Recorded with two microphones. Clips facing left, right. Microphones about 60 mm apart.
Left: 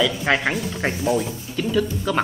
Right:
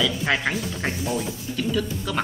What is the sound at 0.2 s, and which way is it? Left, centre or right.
Speech, centre.